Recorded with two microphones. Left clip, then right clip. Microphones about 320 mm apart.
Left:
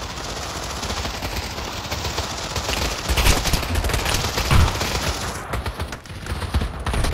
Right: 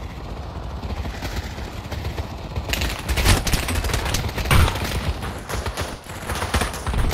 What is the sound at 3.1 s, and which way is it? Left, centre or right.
Fusillade, centre.